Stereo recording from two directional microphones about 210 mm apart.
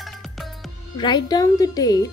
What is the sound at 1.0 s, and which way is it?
Speech, 20° left (ahead or behind).